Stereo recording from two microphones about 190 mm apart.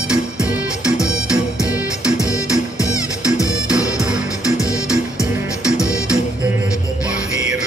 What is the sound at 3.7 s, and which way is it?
Music, 5° right (ahead or behind).